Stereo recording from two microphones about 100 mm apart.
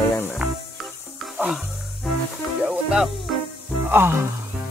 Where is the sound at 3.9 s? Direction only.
20° right (ahead or behind).